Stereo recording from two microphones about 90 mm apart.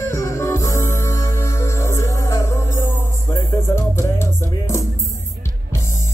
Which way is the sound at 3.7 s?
30° left (ahead or behind).